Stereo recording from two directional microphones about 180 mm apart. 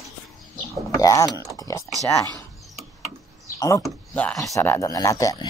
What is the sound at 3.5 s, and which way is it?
Speech, 20° left (ahead or behind).